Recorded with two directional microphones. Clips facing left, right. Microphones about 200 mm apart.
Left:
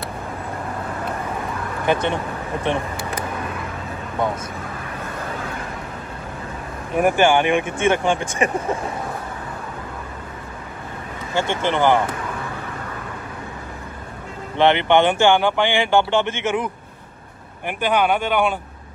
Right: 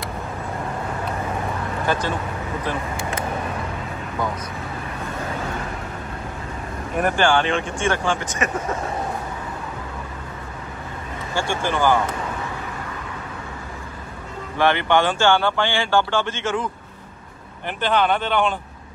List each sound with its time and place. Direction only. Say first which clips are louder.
1.9 s speech: left 4 dB; 25° left (ahead or behind)
7.0 s speech: left 3 dB; 15° left (ahead or behind)
11.6 s speech: left 2 dB; 20° left (ahead or behind)
14.6 s speech: left 3 dB; 20° left (ahead or behind)